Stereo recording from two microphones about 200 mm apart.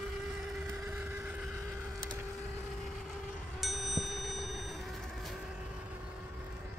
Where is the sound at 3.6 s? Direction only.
Centre (ahead or behind).